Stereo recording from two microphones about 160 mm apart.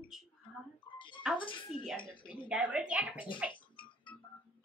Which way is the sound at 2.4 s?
10° right (ahead or behind).